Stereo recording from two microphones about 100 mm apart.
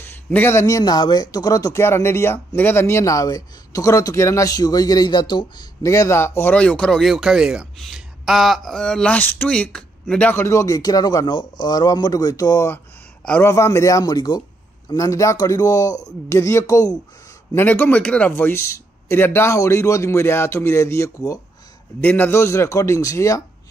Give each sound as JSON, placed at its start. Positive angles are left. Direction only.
{"t": 0.0, "sound": "speech", "side_deg": 20}
{"t": 5.8, "sound": "a man's voice", "side_deg": 30}
{"t": 6.5, "sound": "speech", "side_deg": 10}
{"t": 10.3, "sound": "speech", "side_deg": 25}
{"t": 15.0, "sound": "speech", "side_deg": 35}
{"t": 17.6, "sound": "a man's voice", "side_deg": 20}
{"t": 22.0, "sound": "a man's voice", "side_deg": 20}